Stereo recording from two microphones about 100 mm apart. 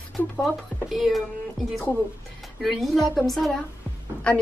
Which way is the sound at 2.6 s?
Centre (ahead or behind).